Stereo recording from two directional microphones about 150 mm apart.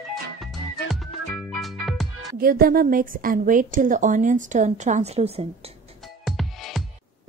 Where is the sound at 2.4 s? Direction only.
75° right (ahead or behind); by 5.7 s 40° right (ahead or behind).